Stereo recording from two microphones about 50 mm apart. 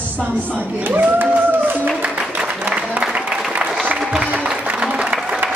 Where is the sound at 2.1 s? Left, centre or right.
Right.